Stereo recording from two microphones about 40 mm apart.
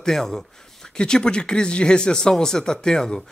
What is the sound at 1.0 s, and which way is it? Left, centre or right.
A man's voice, left.